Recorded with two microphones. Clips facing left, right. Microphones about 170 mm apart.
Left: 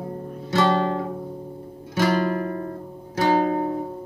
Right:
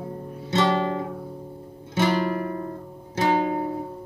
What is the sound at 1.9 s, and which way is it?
Guitar, 20° right (ahead or behind).